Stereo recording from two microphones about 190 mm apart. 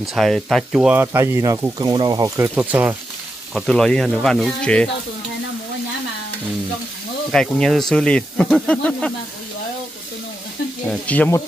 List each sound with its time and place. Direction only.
0.0 s speech: centre (ahead or behind)
7.2 s speech: centre (ahead or behind)
10.9 s speech: 10° left (ahead or behind)